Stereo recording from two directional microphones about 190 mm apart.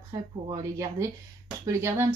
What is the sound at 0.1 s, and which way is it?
A woman's voice, 20° right (ahead or behind).